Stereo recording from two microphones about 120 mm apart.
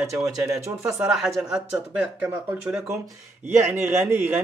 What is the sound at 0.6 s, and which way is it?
Speech, 25° right (ahead or behind).